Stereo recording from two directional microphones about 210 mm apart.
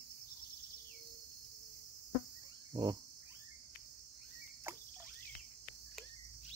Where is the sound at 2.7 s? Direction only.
20° right (ahead or behind).